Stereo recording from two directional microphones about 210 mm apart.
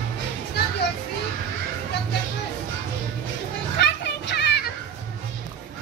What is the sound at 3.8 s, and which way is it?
Children playing, 55° left (ahead or behind).